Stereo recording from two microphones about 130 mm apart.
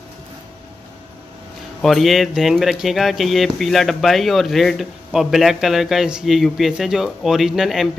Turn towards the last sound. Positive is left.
turn(degrees=0)  # may be behind; listen again after turning